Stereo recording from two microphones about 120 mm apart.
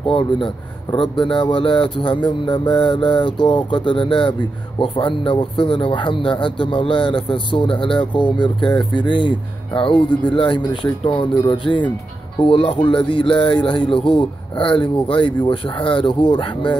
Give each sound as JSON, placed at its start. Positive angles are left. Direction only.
{"t": 0.1, "sound": "speech", "side_deg": 45}